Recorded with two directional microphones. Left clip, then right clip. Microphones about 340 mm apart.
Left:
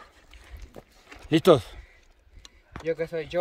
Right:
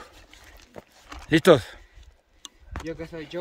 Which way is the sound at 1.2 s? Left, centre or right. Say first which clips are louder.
Right 2 dB; centre.